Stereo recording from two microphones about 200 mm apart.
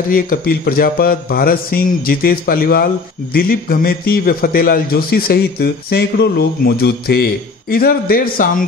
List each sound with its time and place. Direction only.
0.1 s a man's voice: 50° left (ahead or behind)